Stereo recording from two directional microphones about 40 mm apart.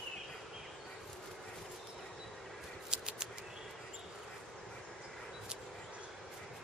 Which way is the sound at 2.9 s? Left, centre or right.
Right.